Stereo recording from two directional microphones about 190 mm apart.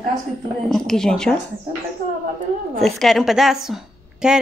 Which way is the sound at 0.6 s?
Centre (ahead or behind).